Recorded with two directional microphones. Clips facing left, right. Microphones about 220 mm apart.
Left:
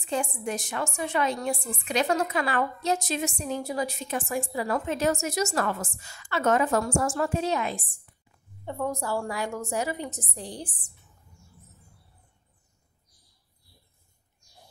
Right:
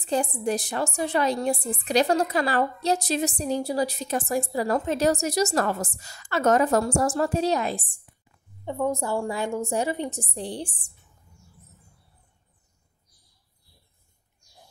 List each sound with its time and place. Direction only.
0.0 s a woman's voice: 35° right (ahead or behind)
8.6 s a woman's voice: 20° right (ahead or behind)